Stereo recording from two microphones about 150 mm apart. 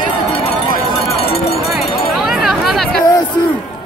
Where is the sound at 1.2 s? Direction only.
40° left (ahead or behind).